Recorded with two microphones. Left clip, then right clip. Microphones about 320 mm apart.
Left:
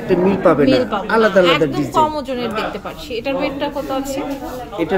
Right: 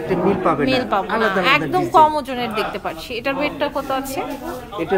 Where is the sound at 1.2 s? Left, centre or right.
Centre.